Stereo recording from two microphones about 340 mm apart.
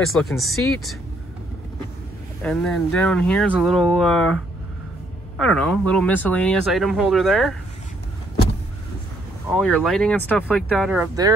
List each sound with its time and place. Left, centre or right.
0.0 s speech: centre
2.4 s speech: centre
5.4 s speech: centre
9.5 s speech: centre